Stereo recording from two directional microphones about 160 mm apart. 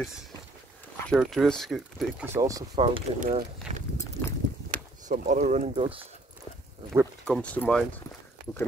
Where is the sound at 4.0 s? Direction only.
15° left (ahead or behind).